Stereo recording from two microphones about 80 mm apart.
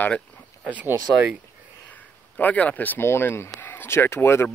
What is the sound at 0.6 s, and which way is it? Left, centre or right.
Speech, centre.